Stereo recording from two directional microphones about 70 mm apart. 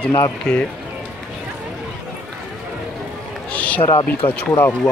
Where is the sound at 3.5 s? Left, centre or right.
Left.